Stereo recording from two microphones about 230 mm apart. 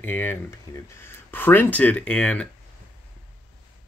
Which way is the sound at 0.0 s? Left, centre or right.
Centre.